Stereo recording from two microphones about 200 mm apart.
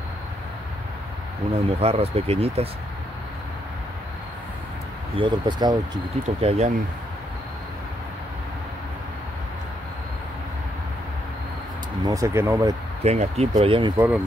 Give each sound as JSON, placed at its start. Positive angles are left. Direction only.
{"t": 1.5, "sound": "speech", "side_deg": -30}
{"t": 5.1, "sound": "speech", "side_deg": -25}
{"t": 6.2, "sound": "speech", "side_deg": -35}
{"t": 12.1, "sound": "speech", "side_deg": -15}
{"t": 13.0, "sound": "speech", "side_deg": -30}
{"t": 13.9, "sound": "speech", "side_deg": -10}